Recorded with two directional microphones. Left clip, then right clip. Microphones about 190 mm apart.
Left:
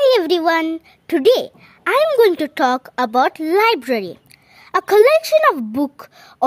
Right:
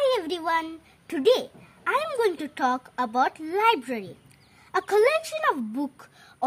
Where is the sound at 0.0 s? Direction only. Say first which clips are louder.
Left 11 dB; 60° left (ahead or behind).